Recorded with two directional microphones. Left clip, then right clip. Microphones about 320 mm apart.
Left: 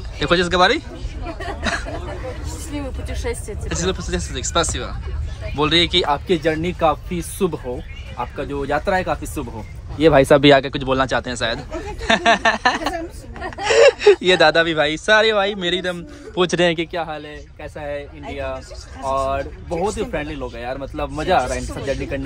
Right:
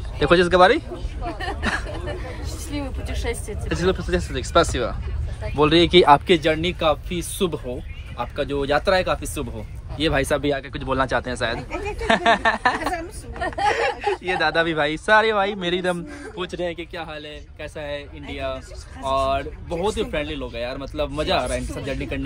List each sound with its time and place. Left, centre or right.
0.2 s speech: centre
1.6 s a sound: centre
2.7 s speech: centre
5.9 s speech: right
6.2 s speech: centre
9.9 s speech: centre
13.5 s chuckle: centre
14.2 s speech: centre
16.6 s speech: left
16.9 s speech: centre